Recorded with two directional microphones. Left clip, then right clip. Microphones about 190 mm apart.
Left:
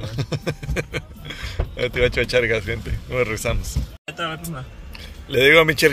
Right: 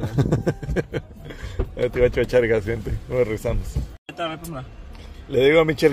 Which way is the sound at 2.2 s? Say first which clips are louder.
Right 1 dB; 30° right (ahead or behind).